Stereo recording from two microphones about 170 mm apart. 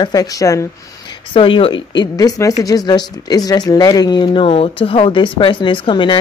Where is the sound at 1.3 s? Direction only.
30° left (ahead or behind).